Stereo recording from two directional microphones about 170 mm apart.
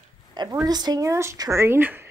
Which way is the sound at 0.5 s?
25° right (ahead or behind).